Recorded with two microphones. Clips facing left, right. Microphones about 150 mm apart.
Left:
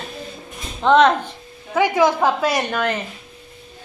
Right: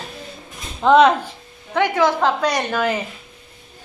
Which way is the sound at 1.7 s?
10° left (ahead or behind).